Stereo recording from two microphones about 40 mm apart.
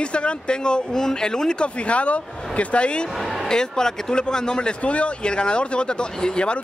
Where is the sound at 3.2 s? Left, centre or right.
Centre.